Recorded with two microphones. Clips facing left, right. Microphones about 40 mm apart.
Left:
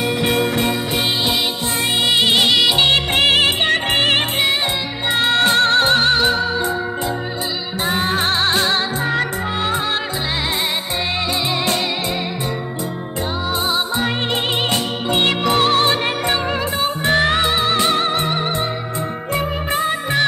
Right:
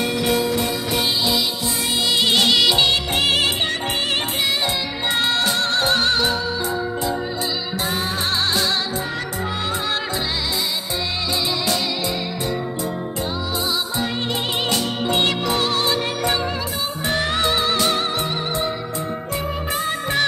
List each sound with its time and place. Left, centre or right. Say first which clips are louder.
0.2 s music: left 2 dB; left
2.2 s music: even; centre
2.9 s music: left 4 dB; left
3.7 s music: left 6 dB; left
5.1 s music: left 4 dB; left
5.4 s music: left 6 dB; left
7.8 s music: left 7 dB; left
13.7 s music: left 5 dB; left
15.4 s music: left 5 dB; left
17.4 s music: left 2 dB; left
18.1 s music: left 4 dB; left
19.9 s music: even; centre